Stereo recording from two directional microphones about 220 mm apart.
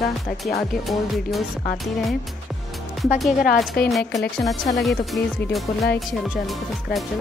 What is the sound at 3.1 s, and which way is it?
Speech, centre (ahead or behind).